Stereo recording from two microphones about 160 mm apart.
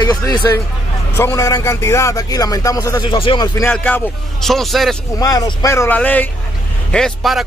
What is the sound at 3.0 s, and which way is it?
Speech, 30° left (ahead or behind).